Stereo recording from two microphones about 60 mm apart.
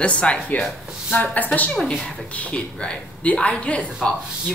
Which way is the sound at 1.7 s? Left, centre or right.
Centre.